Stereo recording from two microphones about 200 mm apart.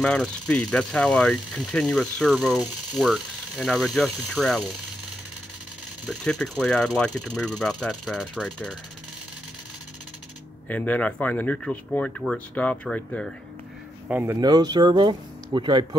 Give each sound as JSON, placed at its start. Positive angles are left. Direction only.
{"t": 0.0, "sound": "speech", "side_deg": 5}
{"t": 6.0, "sound": "speech", "side_deg": 5}
{"t": 10.7, "sound": "speech", "side_deg": 5}
{"t": 14.0, "sound": "speech", "side_deg": -10}